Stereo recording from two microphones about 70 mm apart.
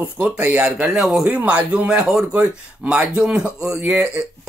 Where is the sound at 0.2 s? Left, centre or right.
Right; by 1.3 s centre.